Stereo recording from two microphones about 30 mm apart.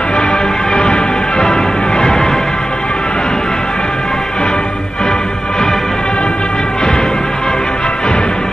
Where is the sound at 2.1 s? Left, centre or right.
Centre.